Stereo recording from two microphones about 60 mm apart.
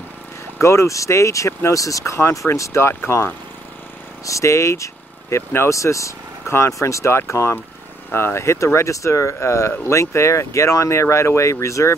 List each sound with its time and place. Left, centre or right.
0.6 s speech: left
4.3 s speech: left